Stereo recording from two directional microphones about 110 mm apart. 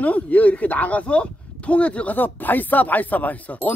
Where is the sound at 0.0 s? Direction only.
15° left (ahead or behind).